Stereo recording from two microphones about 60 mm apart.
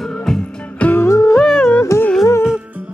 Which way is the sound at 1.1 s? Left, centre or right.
Left.